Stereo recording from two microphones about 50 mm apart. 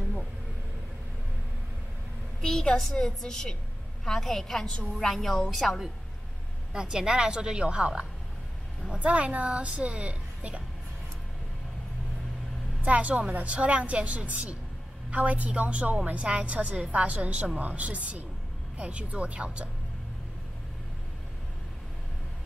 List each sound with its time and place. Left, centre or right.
2.4 s a woman's voice: centre
6.7 s a woman's voice: centre
12.8 s a woman's voice: right